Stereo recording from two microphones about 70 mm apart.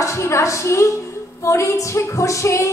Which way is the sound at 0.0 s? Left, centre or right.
Left.